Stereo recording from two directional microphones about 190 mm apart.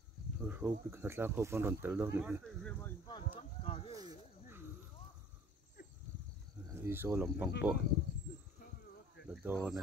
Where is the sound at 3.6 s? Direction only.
30° left (ahead or behind).